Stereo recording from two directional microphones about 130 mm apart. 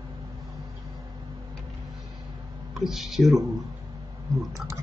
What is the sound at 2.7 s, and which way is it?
Speech, centre (ahead or behind).